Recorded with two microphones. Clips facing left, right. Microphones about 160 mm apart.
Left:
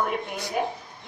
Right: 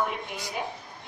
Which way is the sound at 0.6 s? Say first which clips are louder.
Left 7 dB; 50° left (ahead or behind).